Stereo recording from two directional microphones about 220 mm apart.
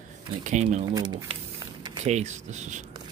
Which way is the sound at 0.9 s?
20° right (ahead or behind).